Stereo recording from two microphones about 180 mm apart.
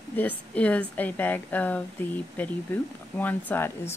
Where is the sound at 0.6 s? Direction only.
10° left (ahead or behind).